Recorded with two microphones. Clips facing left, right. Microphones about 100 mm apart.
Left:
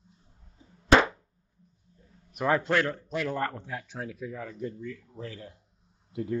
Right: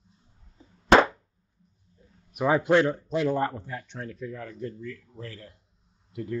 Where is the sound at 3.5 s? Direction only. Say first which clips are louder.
Right 1 dB; centre (ahead or behind); by 6.4 s 25° left (ahead or behind).